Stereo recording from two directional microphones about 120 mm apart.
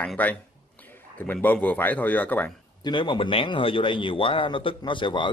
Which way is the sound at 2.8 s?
40° left (ahead or behind).